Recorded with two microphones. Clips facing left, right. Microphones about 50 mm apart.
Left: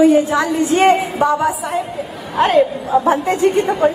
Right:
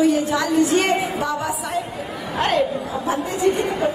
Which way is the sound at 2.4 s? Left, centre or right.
Centre.